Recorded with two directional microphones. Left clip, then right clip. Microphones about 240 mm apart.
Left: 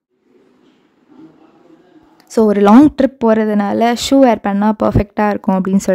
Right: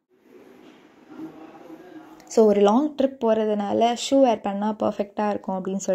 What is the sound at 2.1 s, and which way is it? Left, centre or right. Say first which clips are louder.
Speech: left 5 dB; left.